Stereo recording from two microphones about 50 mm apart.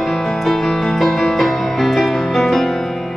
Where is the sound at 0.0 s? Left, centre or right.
Centre.